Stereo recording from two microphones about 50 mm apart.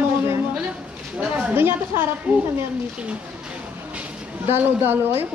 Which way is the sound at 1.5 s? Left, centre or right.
Right.